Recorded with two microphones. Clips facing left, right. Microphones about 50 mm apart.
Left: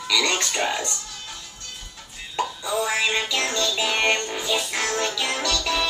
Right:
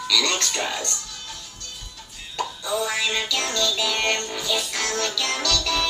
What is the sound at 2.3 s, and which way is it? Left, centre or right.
Music, centre.